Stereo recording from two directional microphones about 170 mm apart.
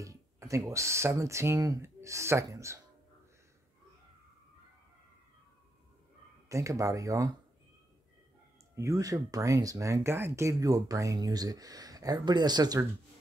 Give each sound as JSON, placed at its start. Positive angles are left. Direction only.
{"t": 0.0, "sound": "speech", "side_deg": -20}
{"t": 6.5, "sound": "speech", "side_deg": -20}
{"t": 8.7, "sound": "speech", "side_deg": -20}